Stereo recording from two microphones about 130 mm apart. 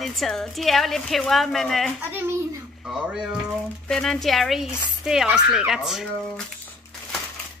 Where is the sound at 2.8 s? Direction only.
5° right (ahead or behind).